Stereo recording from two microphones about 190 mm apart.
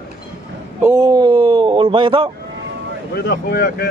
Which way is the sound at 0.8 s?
15° right (ahead or behind).